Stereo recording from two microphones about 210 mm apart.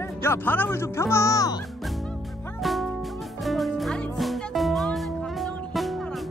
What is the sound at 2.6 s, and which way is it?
Music, centre (ahead or behind).